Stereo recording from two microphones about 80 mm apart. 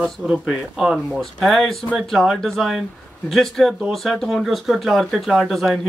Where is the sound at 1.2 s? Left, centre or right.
Centre.